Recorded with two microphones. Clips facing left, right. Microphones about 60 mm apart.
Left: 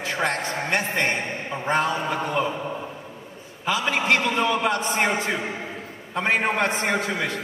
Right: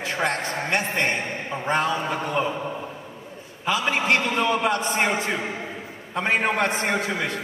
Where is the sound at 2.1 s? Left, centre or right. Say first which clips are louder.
Even; centre.